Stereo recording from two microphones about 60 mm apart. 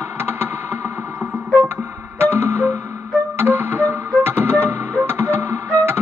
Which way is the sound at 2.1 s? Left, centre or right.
Right.